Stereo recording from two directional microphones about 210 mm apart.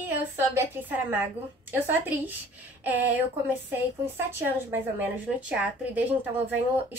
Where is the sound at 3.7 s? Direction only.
10° right (ahead or behind).